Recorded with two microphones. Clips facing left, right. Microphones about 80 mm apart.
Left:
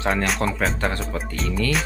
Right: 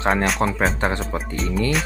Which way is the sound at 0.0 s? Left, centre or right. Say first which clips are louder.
Right 3 dB; right.